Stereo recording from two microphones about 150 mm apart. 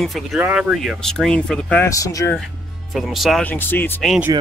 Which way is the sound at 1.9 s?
20° left (ahead or behind).